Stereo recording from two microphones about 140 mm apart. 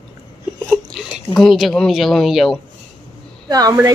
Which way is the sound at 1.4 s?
Centre (ahead or behind).